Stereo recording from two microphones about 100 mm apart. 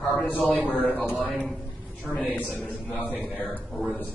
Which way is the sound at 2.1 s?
10° right (ahead or behind).